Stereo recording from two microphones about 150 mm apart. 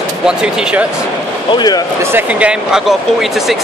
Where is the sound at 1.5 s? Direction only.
25° left (ahead or behind).